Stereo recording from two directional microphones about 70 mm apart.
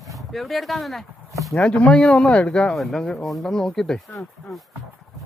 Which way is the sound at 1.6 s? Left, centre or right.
Centre.